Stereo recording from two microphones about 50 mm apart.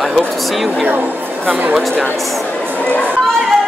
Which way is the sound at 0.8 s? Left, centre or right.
Right.